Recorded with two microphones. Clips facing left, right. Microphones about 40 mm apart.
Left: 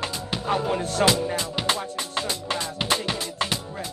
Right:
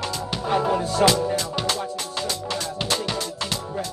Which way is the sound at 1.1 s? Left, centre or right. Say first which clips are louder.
Right 2 dB; left.